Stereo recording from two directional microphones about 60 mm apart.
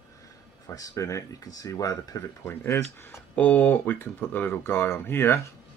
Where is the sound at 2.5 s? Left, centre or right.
Left.